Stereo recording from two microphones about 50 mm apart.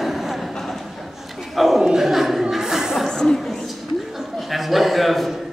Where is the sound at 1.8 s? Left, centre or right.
Centre.